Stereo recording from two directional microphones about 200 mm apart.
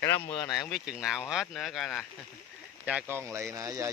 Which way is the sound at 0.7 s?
Centre (ahead or behind).